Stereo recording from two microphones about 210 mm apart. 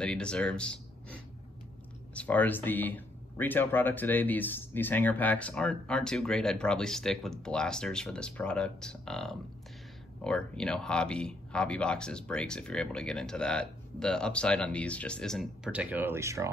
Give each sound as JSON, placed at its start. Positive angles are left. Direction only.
{"t": 0.0, "sound": "speech", "side_deg": 5}
{"t": 2.1, "sound": "speech", "side_deg": 5}